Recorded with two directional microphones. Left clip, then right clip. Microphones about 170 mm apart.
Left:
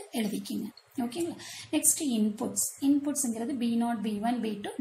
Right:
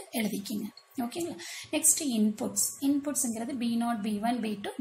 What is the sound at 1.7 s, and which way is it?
A woman's voice, 5° right (ahead or behind).